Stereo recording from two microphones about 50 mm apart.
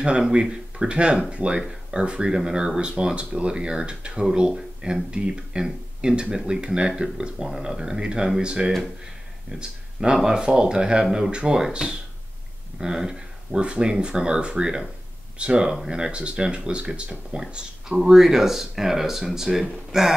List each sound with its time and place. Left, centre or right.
0.2 s speech: centre